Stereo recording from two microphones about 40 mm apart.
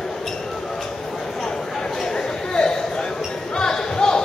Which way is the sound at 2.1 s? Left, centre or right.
Centre.